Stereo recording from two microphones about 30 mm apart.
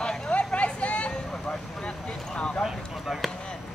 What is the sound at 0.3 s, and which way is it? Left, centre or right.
Vehicle, left.